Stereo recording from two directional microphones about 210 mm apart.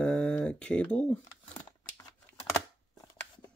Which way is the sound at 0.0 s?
5° left (ahead or behind).